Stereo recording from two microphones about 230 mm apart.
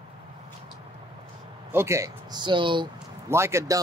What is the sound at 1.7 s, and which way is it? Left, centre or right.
Speech, centre.